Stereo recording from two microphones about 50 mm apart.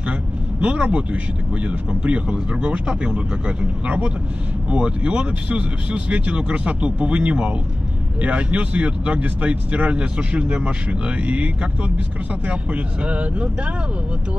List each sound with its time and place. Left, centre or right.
0.6 s speech: right